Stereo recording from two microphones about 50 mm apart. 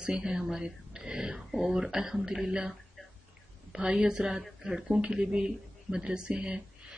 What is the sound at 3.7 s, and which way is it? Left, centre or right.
Speech, centre.